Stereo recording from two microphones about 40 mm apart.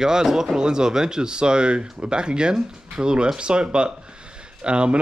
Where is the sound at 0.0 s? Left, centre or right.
Centre.